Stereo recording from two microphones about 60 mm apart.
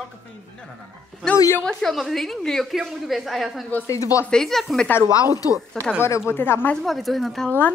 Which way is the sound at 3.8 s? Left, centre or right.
Left.